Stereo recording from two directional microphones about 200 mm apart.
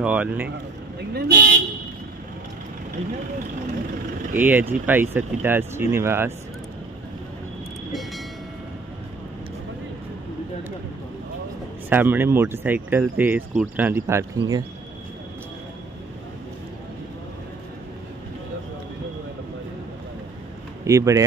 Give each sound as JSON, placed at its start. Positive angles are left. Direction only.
{"t": 0.0, "sound": "speech", "side_deg": -5}
{"t": 1.1, "sound": "speech", "side_deg": -55}
{"t": 4.3, "sound": "speech", "side_deg": -10}
{"t": 11.9, "sound": "speech", "side_deg": -10}
{"t": 20.8, "sound": "speech", "side_deg": -15}